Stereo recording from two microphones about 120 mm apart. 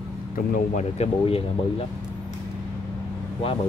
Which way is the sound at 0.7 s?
60° left (ahead or behind).